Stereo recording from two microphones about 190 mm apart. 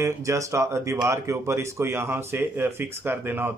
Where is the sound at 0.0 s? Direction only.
15° right (ahead or behind).